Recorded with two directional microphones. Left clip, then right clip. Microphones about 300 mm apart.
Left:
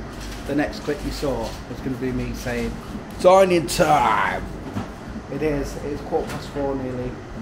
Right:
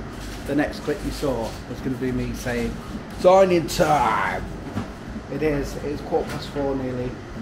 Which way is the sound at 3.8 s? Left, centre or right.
Left.